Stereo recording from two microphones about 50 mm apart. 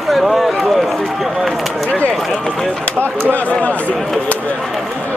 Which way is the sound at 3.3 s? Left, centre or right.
Left.